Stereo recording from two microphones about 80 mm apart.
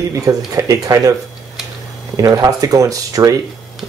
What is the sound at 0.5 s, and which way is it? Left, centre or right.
Speech, right.